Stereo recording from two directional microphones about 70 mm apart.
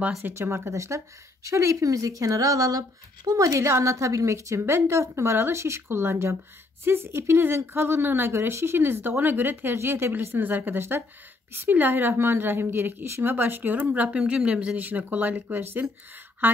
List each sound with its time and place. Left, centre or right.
0.2 s speech: right
4.6 s a woman's voice: right